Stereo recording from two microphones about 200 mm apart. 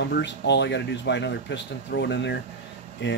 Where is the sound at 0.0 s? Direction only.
60° left (ahead or behind).